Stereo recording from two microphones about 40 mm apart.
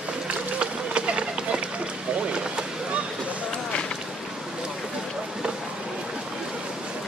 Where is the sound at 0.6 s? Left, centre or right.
Right.